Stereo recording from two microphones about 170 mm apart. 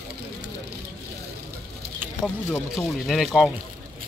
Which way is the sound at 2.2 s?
Centre (ahead or behind).